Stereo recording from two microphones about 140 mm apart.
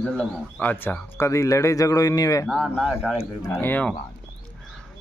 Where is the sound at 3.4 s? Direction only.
15° left (ahead or behind).